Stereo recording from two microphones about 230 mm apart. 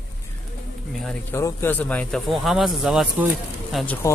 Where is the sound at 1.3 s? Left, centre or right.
Centre.